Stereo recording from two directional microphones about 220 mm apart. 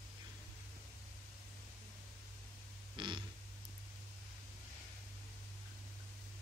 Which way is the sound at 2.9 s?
20° right (ahead or behind).